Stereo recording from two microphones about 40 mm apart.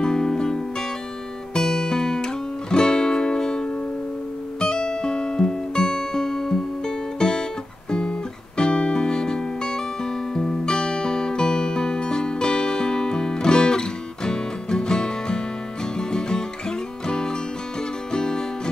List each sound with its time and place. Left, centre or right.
0.0 s music: centre